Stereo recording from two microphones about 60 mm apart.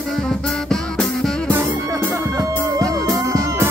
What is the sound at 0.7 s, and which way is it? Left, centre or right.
Music, centre.